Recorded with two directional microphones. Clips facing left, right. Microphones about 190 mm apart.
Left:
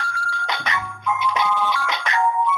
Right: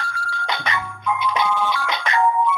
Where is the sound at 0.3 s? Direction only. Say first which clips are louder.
Right 2 dB; 30° right (ahead or behind).